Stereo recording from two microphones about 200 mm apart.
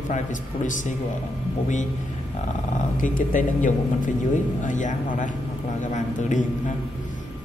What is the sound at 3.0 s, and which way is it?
A man's voice, 40° left (ahead or behind).